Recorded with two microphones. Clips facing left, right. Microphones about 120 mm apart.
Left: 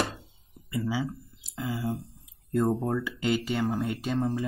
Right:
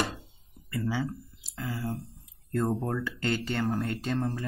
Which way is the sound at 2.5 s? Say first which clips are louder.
Left 3 dB; 5° left (ahead or behind).